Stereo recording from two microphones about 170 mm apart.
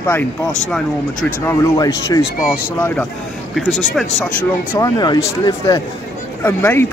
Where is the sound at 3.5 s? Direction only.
Centre (ahead or behind).